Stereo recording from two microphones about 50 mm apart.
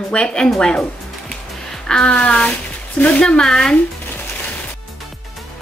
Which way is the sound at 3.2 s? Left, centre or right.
Centre.